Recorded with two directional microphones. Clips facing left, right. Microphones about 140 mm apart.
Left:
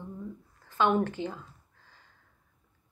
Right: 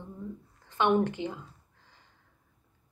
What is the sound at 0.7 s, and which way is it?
Speech, 20° right (ahead or behind).